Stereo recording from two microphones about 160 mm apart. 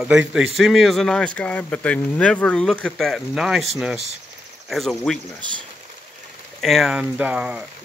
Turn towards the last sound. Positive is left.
turn(degrees=-5)  # may be behind; listen again after turning